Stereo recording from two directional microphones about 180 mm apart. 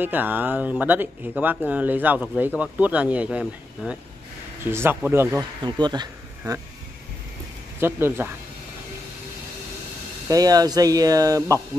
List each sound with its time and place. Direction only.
0.0 s speech: 10° right (ahead or behind)
5.6 s speech: 25° right (ahead or behind)
7.8 s speech: 10° right (ahead or behind)
10.2 s speech: 20° right (ahead or behind)